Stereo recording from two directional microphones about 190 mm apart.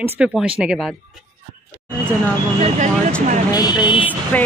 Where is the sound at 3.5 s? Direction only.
20° left (ahead or behind).